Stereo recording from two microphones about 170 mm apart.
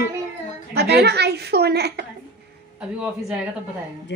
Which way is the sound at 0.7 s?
75° right (ahead or behind).